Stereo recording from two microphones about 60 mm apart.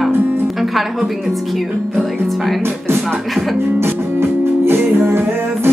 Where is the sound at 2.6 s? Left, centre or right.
Right.